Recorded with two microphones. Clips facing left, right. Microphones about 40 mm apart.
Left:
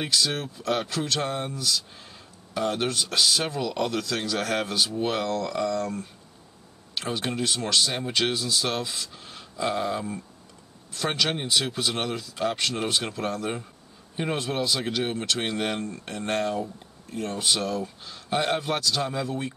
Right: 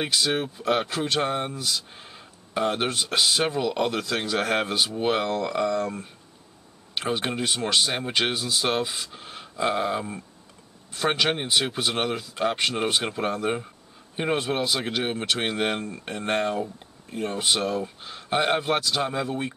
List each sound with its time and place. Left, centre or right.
0.0 s speech: right